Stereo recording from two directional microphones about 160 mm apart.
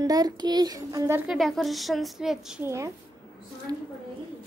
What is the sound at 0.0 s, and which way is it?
A child's voice, 25° right (ahead or behind).